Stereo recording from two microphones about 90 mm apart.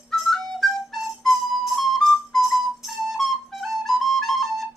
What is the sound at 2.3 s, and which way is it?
Flute, centre (ahead or behind).